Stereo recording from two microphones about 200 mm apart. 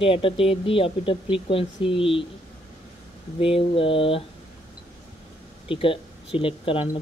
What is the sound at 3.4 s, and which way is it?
Speech, 25° left (ahead or behind).